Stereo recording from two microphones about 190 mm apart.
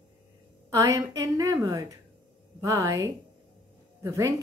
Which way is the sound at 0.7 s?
15° right (ahead or behind).